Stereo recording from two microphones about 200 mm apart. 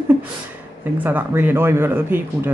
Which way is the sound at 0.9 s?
10° right (ahead or behind).